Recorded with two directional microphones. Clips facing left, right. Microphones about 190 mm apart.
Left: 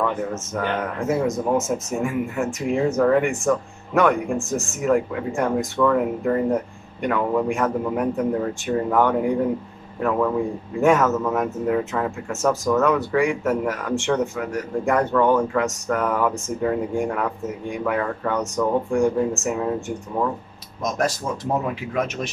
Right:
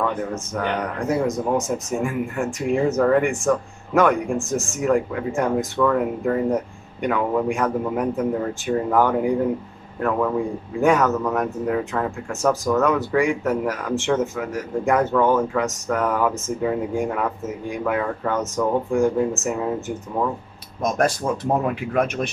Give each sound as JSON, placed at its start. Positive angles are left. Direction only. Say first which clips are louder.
{"t": 0.2, "sound": "speech", "louder": "even", "side_deg": 0}
{"t": 21.9, "sound": "a man's voice", "louder": "right 3 dB", "side_deg": -55}